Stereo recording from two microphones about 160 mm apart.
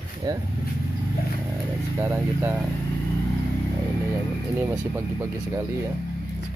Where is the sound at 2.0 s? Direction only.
10° right (ahead or behind).